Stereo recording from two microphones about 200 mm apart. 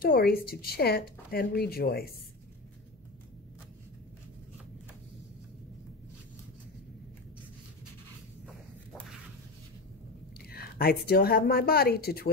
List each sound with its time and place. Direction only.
0.0 s speech: 50° left (ahead or behind)
10.5 s speech: 50° left (ahead or behind)